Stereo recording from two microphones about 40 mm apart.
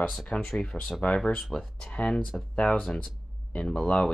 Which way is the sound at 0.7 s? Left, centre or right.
Centre.